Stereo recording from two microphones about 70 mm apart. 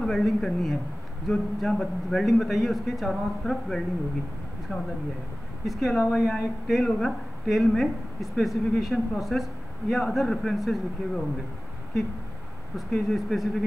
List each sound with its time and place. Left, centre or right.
0.0 s speech: centre
4.7 s speech: centre
5.7 s speech: centre
12.7 s speech: centre